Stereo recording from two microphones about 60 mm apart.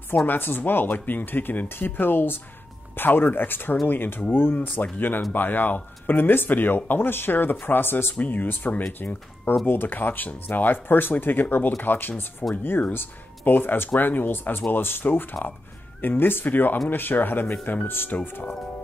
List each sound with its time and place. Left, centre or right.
0.3 s speech: left
4.6 s speech: left